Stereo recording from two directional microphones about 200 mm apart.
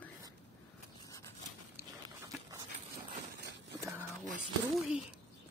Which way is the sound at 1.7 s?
15° right (ahead or behind).